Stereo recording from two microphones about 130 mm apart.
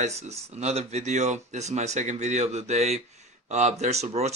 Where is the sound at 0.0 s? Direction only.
55° right (ahead or behind).